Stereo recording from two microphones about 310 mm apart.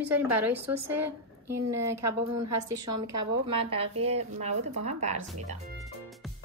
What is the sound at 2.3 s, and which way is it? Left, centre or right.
A woman's voice, right.